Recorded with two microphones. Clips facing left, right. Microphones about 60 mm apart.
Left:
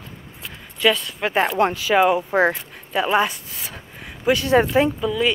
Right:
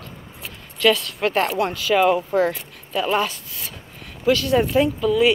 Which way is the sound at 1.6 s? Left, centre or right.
Left.